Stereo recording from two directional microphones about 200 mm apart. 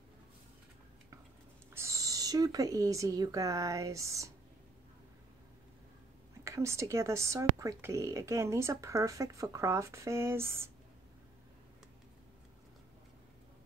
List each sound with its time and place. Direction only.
1.7 s speech: 15° right (ahead or behind)
6.4 s speech: 15° right (ahead or behind)